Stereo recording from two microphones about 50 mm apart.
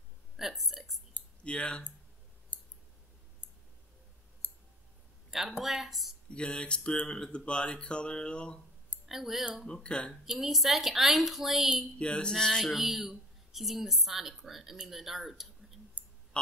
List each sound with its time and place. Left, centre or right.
0.4 s a sound: centre
1.4 s speech: left
2.5 s clicking: left
5.6 s speech: centre
6.3 s speech: centre
9.0 s speech: centre
9.8 s a sound: centre
10.2 s speech: centre
12.0 s a sound: centre
12.7 s speech: centre